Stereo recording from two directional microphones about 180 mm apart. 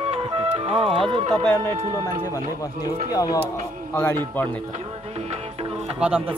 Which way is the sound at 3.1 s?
20° left (ahead or behind).